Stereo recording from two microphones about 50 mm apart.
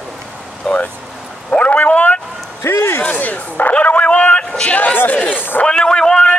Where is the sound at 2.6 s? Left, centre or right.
Left.